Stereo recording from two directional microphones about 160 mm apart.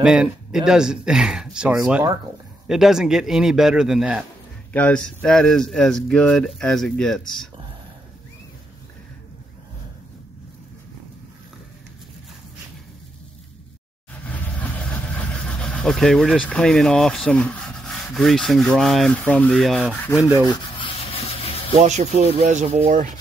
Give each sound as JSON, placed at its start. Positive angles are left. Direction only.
{"t": 0.0, "sound": "speech", "side_deg": -5}
{"t": 4.7, "sound": "speech", "side_deg": 5}
{"t": 14.2, "sound": "speech", "side_deg": 10}
{"t": 20.2, "sound": "rub", "side_deg": -15}
{"t": 20.4, "sound": "sanding", "side_deg": 30}
{"t": 21.7, "sound": "speech", "side_deg": -45}